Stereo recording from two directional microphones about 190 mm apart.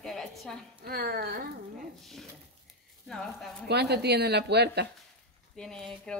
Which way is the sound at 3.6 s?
60° right (ahead or behind).